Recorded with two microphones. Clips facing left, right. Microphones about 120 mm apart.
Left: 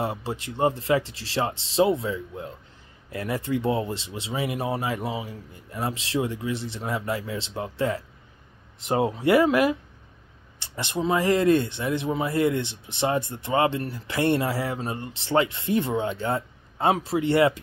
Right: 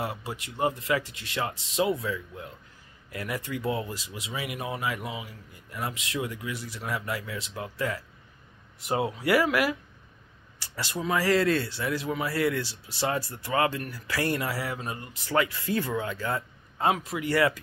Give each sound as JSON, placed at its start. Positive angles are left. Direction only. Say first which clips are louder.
{"t": 0.0, "sound": "speech", "louder": "left 5 dB", "side_deg": 30}